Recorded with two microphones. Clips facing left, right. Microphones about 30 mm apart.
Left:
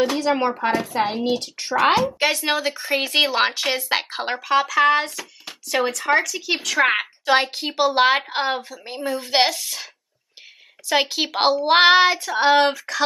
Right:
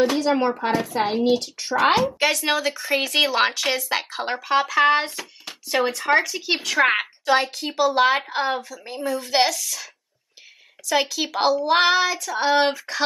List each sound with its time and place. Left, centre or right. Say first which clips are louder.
0.0 s a woman's voice: even; centre
1.9 s a woman's voice: even; centre
2.1 s speech: even; centre
3.3 s speech: even; centre
3.7 s speech: left 2 dB; left
4.4 s a woman's voice: left 1 dB; centre
5.2 s a sound: even; centre
5.9 s speech: even; centre
6.8 s a woman's voice: even; centre
7.2 s speech: left 2 dB; left
10.9 s speech: left 2 dB; left
12.5 s a woman's voice: left 2 dB; centre